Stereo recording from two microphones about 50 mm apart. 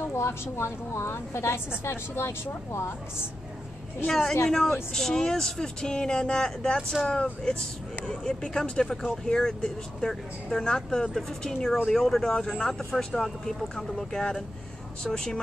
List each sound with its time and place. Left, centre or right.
0.1 s a woman's voice: left
4.1 s speech: centre
8.1 s speech: centre